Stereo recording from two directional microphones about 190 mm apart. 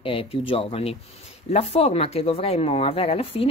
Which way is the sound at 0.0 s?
30° left (ahead or behind).